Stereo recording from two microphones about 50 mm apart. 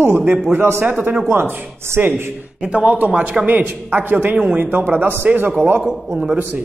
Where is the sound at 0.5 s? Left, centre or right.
Right.